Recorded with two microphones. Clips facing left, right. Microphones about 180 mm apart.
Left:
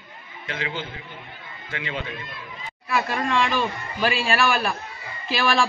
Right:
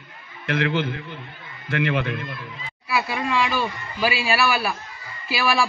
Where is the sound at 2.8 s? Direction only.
5° right (ahead or behind).